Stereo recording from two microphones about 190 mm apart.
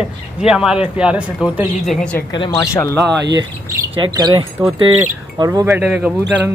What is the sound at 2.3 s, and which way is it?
Speech, 20° left (ahead or behind).